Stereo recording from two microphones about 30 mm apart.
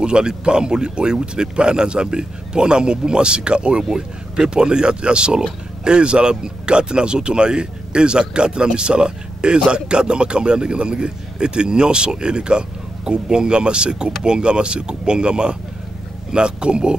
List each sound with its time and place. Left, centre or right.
0.0 s speech: right
3.9 s a man's voice: right